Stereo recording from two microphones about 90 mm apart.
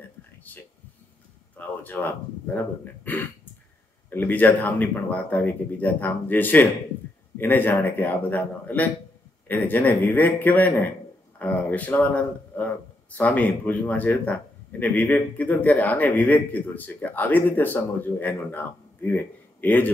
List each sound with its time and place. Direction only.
0.5 s a man's voice: 20° left (ahead or behind)